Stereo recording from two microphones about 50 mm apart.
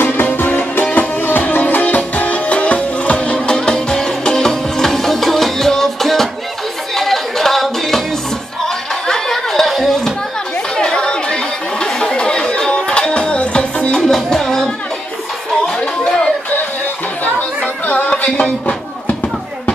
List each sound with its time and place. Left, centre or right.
0.4 s music: left; by 8.0 s centre
9.0 s a sound: centre
10.8 s chatter: centre
14.0 s music: centre
17.8 s music: left